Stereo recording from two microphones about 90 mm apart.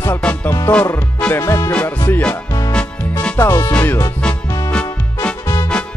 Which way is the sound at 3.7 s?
20° left (ahead or behind).